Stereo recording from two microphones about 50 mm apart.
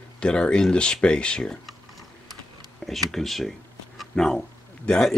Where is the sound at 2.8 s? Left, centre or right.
Centre.